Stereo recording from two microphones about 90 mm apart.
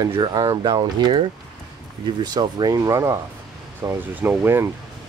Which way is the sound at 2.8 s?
35° right (ahead or behind).